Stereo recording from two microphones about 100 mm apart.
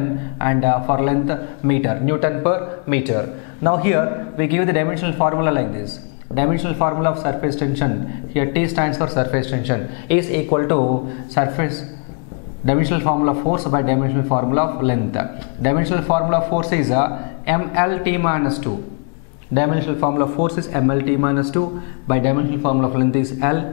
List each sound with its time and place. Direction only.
0.4 s a man's voice: 10° left (ahead or behind)